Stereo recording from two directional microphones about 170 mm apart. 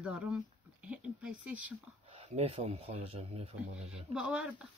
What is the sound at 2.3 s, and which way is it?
Speech, 35° right (ahead or behind).